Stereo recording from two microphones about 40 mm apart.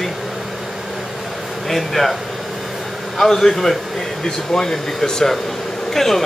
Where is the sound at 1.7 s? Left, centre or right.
Centre.